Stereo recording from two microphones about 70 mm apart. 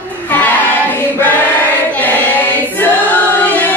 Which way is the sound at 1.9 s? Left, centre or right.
Left.